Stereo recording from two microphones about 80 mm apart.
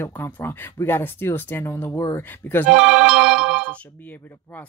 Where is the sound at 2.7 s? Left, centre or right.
Centre.